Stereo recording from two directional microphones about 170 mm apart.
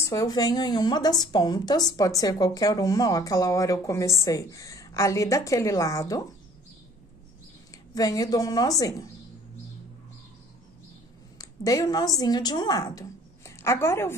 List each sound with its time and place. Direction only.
0.0 s a woman's voice: 20° left (ahead or behind)
7.9 s a woman's voice: 20° left (ahead or behind)
11.3 s a woman's voice: 20° left (ahead or behind)